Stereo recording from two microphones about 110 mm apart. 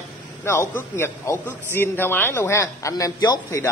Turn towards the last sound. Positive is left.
turn(degrees=35)  # may be behind; listen again after turning